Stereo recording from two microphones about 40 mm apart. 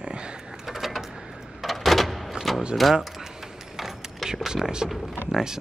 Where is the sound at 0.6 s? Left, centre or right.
Centre.